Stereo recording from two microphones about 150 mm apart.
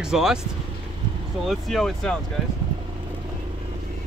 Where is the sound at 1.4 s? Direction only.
Centre (ahead or behind).